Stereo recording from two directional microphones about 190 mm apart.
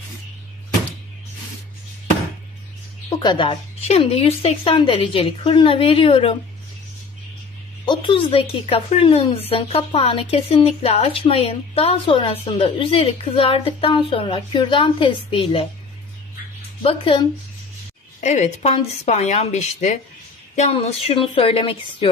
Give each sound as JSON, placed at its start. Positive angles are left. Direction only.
{"t": 3.2, "sound": "speech", "side_deg": 25}
{"t": 7.8, "sound": "speech", "side_deg": 25}
{"t": 16.8, "sound": "speech", "side_deg": 25}